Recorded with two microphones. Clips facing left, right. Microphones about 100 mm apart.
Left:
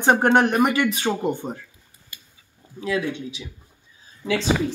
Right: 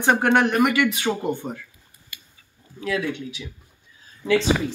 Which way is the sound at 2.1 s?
35° left (ahead or behind).